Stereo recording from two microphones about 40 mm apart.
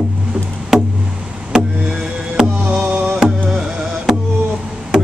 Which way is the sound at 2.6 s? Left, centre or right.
Right.